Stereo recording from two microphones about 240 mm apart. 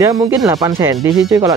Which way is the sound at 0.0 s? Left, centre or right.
Centre.